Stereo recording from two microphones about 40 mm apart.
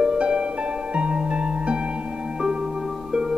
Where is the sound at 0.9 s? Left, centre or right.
Right.